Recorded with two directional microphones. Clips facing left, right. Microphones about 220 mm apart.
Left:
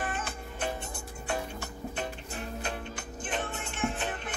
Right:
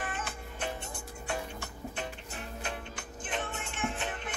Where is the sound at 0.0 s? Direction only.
35° left (ahead or behind).